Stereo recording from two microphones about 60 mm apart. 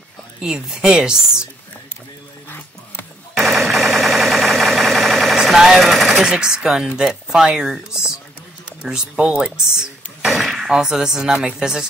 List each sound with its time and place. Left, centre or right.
0.4 s speech: centre
3.3 s a sound: centre
5.9 s speech: centre
9.1 s speech: right
10.2 s speech: centre